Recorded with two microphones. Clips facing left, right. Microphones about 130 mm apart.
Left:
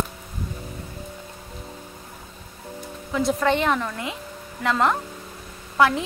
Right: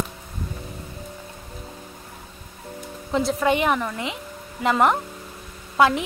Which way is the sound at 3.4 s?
15° right (ahead or behind).